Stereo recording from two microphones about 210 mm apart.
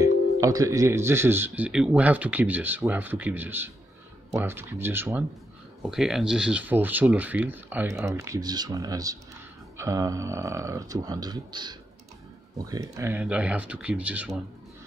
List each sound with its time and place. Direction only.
0.0 s speech: 15° right (ahead or behind)